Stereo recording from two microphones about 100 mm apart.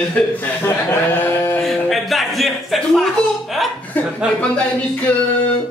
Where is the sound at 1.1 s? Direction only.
20° left (ahead or behind).